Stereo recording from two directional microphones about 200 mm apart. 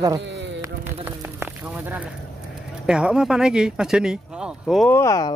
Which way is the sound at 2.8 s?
5° right (ahead or behind).